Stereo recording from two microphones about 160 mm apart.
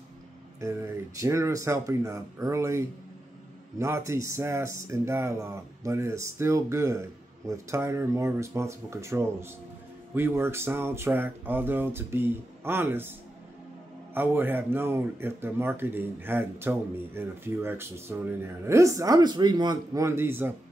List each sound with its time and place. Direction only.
0.6 s speech: 20° right (ahead or behind)
14.1 s speech: 15° right (ahead or behind)